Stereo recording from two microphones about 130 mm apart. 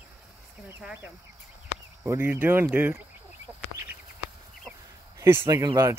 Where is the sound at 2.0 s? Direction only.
15° right (ahead or behind).